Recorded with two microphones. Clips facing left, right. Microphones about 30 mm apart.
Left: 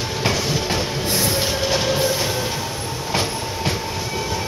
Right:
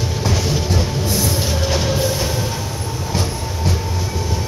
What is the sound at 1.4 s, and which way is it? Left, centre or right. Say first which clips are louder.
Train: even; centre.